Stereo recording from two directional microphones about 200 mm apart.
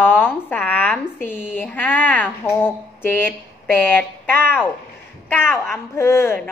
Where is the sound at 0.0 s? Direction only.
10° left (ahead or behind).